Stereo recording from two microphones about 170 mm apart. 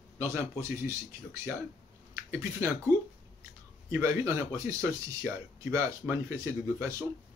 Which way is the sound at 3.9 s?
20° right (ahead or behind).